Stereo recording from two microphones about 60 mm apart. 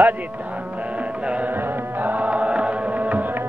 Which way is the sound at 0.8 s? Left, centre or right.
Right.